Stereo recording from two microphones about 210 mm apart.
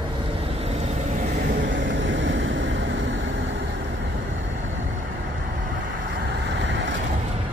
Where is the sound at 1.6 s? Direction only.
60° right (ahead or behind).